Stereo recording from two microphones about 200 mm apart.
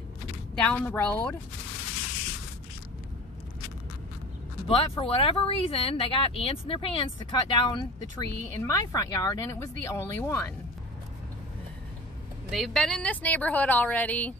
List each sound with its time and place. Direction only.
0.6 s speech: 5° left (ahead or behind)
4.6 s speech: 30° left (ahead or behind); by 10.5 s 10° left (ahead or behind)
12.4 s speech: centre (ahead or behind)